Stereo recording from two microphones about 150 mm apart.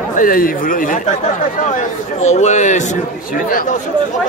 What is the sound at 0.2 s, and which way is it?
Speech, 70° left (ahead or behind).